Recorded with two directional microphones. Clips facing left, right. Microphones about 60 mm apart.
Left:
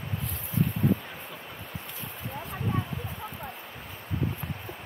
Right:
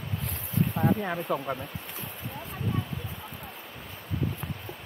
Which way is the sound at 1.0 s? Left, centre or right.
Right.